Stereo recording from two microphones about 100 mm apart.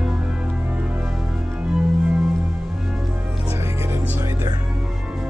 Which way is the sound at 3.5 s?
25° right (ahead or behind).